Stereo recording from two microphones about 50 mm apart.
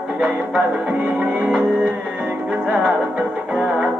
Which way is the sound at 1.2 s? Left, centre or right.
Right.